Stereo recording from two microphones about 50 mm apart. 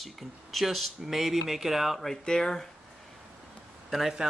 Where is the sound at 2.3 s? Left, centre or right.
Centre.